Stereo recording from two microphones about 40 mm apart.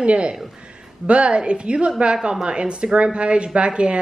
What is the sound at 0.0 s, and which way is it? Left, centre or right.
A woman's voice, right.